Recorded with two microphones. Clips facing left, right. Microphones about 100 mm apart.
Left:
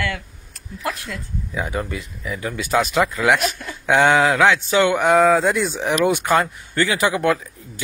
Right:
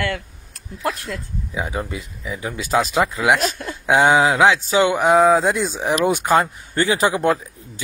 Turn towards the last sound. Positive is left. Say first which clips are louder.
# right 1 dB
turn(degrees=-25)  # may be behind; listen again after turning